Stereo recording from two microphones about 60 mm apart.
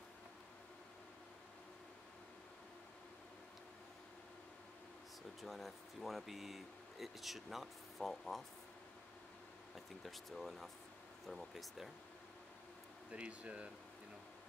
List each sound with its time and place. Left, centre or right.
5.4 s speech: centre
9.8 s speech: centre
13.1 s speech: right